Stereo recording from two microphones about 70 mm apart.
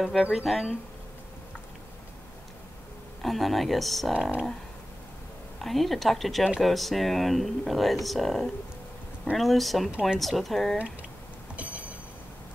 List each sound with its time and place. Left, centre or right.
0.0 s speech: centre
3.2 s speech: centre
5.6 s speech: centre
11.5 s vehicle: right